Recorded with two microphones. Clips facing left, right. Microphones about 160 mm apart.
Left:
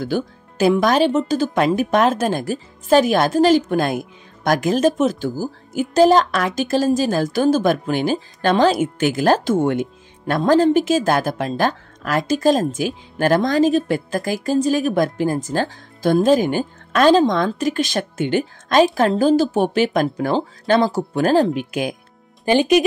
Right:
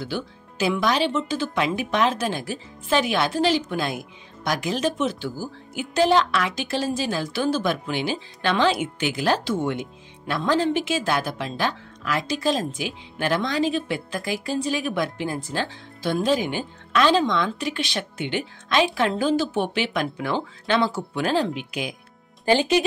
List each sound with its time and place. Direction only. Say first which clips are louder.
0.0 s speech: left 7 dB; 45° left (ahead or behind)
22.4 s speech: left 5 dB; 15° left (ahead or behind)